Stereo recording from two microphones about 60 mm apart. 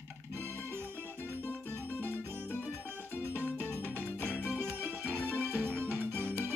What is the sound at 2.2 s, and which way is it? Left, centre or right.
Music, right.